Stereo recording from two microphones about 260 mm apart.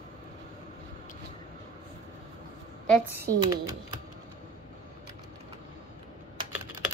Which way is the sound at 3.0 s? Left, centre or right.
Centre.